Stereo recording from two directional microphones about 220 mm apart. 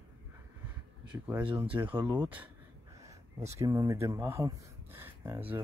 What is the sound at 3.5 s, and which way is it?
Speech, 15° right (ahead or behind).